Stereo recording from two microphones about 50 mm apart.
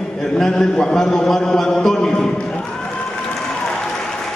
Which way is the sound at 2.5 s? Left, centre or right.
Centre.